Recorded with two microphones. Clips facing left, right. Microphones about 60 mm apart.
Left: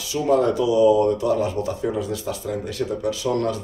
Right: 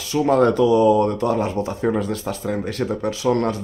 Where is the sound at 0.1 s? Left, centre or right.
Right.